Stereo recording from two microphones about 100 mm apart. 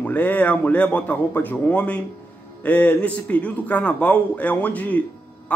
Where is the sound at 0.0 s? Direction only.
15° left (ahead or behind).